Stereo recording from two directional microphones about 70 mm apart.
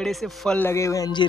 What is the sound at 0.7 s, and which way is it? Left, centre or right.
Speech, left.